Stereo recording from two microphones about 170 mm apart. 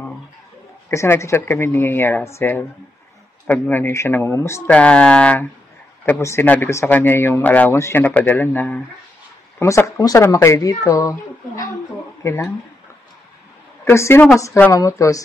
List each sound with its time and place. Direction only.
0.8 s a man's voice: 15° left (ahead or behind)
13.8 s a man's voice: 15° left (ahead or behind)